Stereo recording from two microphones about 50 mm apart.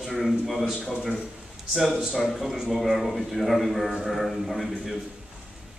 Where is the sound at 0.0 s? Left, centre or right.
Centre.